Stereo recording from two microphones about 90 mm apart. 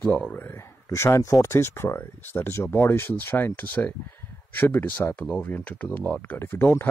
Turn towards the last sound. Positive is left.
turn(degrees=25)  # may be behind; listen again after turning